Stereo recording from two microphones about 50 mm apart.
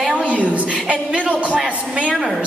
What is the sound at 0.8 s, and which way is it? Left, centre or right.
Speech, right.